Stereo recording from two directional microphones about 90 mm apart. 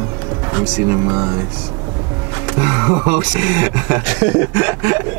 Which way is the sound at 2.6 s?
25° right (ahead or behind).